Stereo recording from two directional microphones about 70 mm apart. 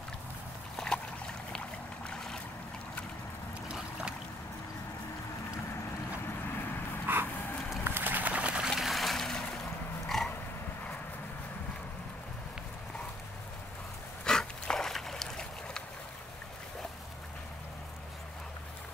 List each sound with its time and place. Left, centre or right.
0.7 s boat: centre
2.0 s boat: centre
7.1 s a sound: right
8.6 s boat: centre
10.0 s pig: centre
14.2 s a sound: centre